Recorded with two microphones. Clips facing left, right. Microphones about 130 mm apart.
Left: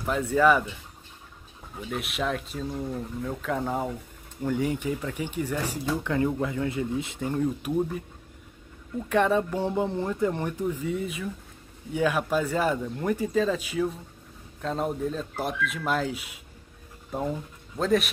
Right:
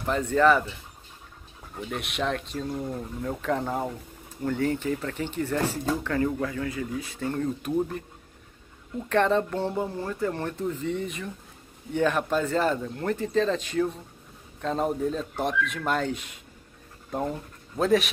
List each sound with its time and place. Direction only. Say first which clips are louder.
0.0 s speech: even; 5° left (ahead or behind)
1.8 s speech: even; centre (ahead or behind)
9.1 s speech: even; 10° left (ahead or behind)